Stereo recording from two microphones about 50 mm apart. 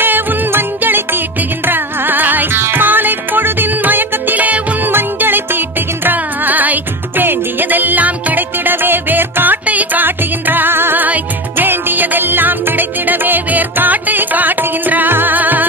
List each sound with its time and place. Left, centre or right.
0.0 s music: right
1.7 s carnatic music: right
2.7 s music: right